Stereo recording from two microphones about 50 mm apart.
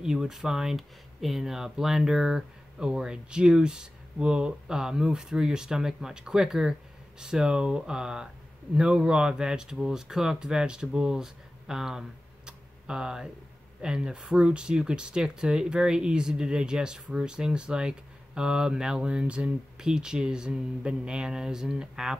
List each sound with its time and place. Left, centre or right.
0.0 s speech: centre
12.4 s a sound: centre
13.7 s speech: centre